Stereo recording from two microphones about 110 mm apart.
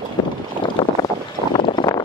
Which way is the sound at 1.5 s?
45° left (ahead or behind).